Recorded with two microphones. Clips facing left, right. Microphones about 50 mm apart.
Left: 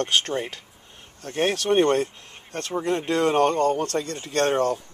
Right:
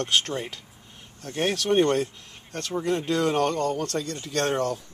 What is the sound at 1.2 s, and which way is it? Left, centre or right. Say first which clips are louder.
Speech: left 3 dB; left.